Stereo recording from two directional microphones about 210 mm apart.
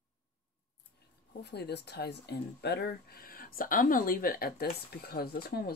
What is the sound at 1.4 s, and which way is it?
Speech, 50° left (ahead or behind).